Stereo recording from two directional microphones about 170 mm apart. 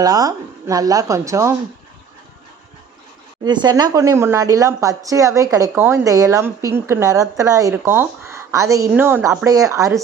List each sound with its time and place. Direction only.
0.0 s speech: 20° right (ahead or behind)
3.4 s speech: 25° right (ahead or behind)